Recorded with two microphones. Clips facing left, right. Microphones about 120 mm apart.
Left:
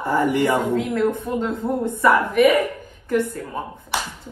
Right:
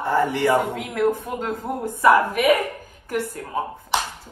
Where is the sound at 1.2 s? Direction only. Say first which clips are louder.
Left 4 dB; centre (ahead or behind).